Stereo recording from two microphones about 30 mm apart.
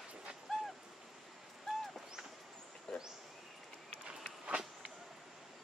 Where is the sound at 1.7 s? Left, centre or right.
Centre.